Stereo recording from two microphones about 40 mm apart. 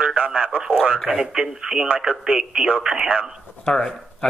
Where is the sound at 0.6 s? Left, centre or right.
Right.